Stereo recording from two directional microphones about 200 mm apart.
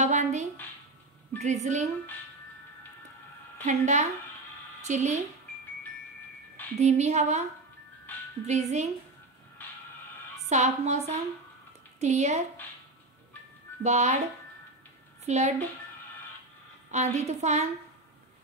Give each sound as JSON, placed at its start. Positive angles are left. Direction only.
{"t": 0.0, "sound": "a sound", "side_deg": -35}
{"t": 1.4, "sound": "a woman's voice", "side_deg": -35}
{"t": 3.6, "sound": "a woman's voice", "side_deg": -35}
{"t": 6.8, "sound": "a woman's voice", "side_deg": -35}
{"t": 8.5, "sound": "a woman's voice", "side_deg": -35}
{"t": 10.5, "sound": "a woman's voice", "side_deg": -35}
{"t": 13.8, "sound": "a woman's voice", "side_deg": -35}
{"t": 15.2, "sound": "a woman's voice", "side_deg": -35}
{"t": 16.9, "sound": "a woman's voice", "side_deg": -35}